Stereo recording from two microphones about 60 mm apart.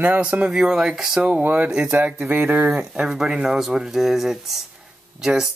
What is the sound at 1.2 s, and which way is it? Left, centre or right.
Speech, right.